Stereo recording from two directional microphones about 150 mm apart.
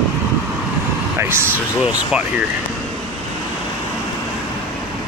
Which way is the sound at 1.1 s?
15° right (ahead or behind).